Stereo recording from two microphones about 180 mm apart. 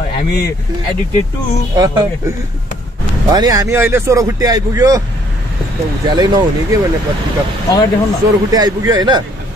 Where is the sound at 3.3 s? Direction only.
20° right (ahead or behind).